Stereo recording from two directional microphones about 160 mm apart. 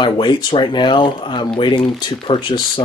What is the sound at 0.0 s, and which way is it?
Speech, 30° left (ahead or behind).